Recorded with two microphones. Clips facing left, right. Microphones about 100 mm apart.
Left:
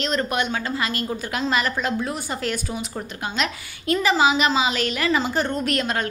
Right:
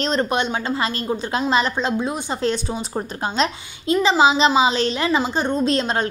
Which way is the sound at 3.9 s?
25° right (ahead or behind).